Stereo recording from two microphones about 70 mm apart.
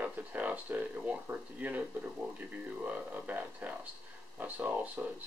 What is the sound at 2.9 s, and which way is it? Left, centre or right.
Speech, right.